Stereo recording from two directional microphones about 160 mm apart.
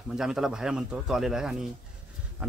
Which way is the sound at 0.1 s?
5° right (ahead or behind).